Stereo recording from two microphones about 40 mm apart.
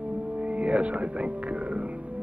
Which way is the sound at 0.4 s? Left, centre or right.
Right.